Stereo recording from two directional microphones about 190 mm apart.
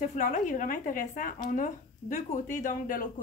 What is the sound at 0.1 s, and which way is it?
Speech, 40° left (ahead or behind).